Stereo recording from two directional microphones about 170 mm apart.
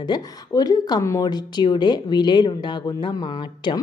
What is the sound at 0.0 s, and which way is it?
A woman's voice, 25° left (ahead or behind).